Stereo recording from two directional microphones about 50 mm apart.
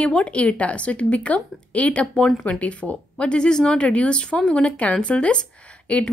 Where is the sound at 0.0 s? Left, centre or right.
Left.